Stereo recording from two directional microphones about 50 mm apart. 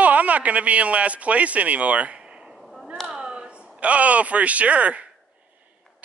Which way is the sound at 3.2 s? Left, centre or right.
Centre.